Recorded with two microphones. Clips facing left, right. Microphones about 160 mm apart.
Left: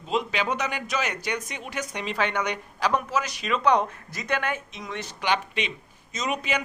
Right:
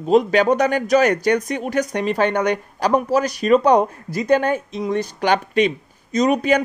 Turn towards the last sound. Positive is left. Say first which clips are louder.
# right 12 dB
turn(degrees=-40)  # may be behind; listen again after turning